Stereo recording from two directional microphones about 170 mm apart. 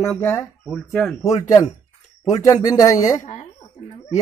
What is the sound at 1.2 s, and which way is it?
Speech, 20° left (ahead or behind).